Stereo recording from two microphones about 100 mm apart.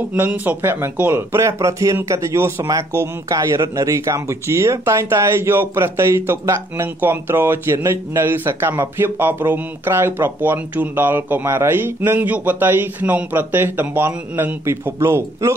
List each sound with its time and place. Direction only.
0.1 s a man's voice: 15° right (ahead or behind)